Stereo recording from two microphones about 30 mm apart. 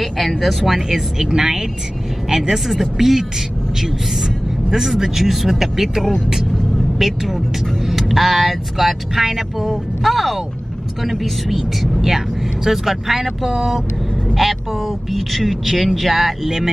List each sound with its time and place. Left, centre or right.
0.0 s speech: centre
4.6 s speech: centre
11.5 s speech: centre
16.4 s speech: centre